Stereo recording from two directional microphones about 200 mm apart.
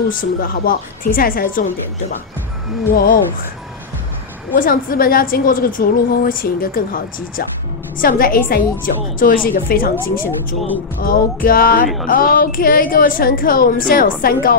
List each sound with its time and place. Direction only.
0.1 s a woman's voice: 45° left (ahead or behind)
2.9 s a woman's voice: 45° left (ahead or behind)
4.6 s a woman's voice: 45° left (ahead or behind)